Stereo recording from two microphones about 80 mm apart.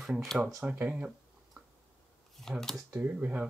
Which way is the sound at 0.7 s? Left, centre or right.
Centre.